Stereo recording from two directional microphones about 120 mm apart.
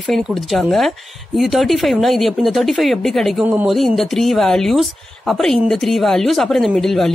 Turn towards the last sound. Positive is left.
turn(degrees=0)  # may be behind; listen again after turning